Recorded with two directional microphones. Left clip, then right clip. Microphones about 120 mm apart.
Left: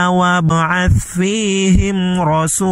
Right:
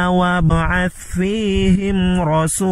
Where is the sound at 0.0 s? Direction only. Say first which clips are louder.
Left 3 dB; 30° left (ahead or behind).